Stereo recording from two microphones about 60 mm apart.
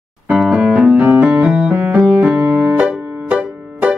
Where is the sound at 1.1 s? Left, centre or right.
Centre.